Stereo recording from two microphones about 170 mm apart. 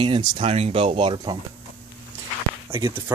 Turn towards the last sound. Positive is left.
turn(degrees=-30)  # may be behind; listen again after turning